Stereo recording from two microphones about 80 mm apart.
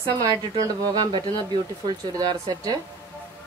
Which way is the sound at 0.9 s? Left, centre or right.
Right.